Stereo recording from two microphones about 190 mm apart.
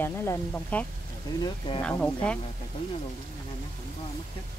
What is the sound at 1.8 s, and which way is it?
Speech, 5° left (ahead or behind).